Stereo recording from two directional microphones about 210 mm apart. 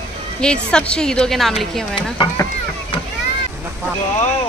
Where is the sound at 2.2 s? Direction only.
25° left (ahead or behind).